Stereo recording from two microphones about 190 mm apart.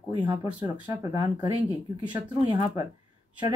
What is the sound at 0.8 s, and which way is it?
Speech, 20° right (ahead or behind).